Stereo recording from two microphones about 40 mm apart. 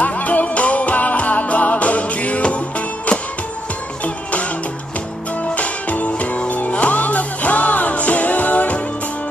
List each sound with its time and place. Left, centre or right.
0.0 s music: left
4.0 s music: left